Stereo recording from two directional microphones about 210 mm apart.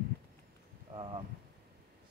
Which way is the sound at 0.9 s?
25° right (ahead or behind).